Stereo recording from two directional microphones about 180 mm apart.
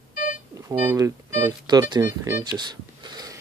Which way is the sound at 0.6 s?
15° right (ahead or behind).